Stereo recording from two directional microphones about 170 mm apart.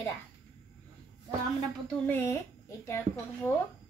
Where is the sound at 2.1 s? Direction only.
15° left (ahead or behind).